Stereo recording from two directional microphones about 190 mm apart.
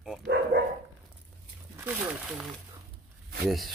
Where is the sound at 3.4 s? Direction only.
Centre (ahead or behind).